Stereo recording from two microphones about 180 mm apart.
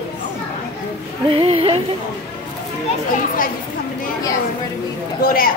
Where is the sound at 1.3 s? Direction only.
30° right (ahead or behind).